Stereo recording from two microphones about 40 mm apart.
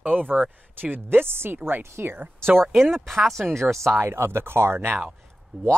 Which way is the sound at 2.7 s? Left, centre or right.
Centre.